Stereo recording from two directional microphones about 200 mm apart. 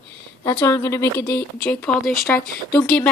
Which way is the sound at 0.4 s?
15° left (ahead or behind).